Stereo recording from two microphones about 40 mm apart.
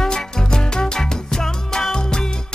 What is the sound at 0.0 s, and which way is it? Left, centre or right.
Music, centre.